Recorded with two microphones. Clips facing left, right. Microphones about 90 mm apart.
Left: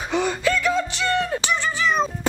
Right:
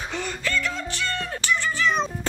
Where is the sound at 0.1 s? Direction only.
15° left (ahead or behind).